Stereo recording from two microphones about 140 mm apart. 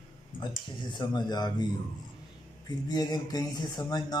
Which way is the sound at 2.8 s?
30° left (ahead or behind).